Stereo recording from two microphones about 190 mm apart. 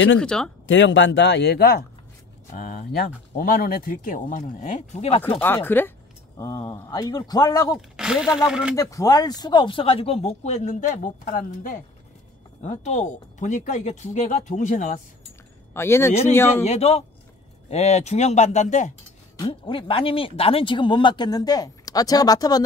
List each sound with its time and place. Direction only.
0.2 s speech: 5° left (ahead or behind)
0.7 s speech: 75° left (ahead or behind); by 5.2 s 35° left (ahead or behind)
5.4 s speech: 10° left (ahead or behind)
7.7 s speech: 5° right (ahead or behind)
8.7 s speech: 20° left (ahead or behind); by 15.0 s 40° left (ahead or behind)
15.7 s speech: 15° left (ahead or behind)
16.6 s speech: 35° left (ahead or behind)
19.4 s speech: 30° left (ahead or behind)